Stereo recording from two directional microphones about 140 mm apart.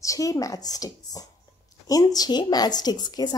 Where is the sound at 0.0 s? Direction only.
25° left (ahead or behind).